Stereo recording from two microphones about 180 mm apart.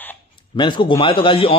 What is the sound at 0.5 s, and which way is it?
Speech, 25° left (ahead or behind).